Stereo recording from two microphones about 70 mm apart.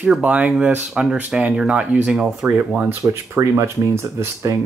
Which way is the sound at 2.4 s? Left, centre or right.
Right.